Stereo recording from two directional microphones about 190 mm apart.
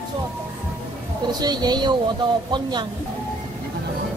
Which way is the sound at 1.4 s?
20° right (ahead or behind).